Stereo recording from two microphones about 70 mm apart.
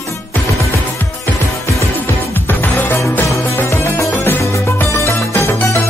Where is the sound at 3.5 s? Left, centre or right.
Left.